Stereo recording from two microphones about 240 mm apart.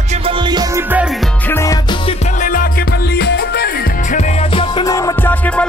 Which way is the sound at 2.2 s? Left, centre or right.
Left.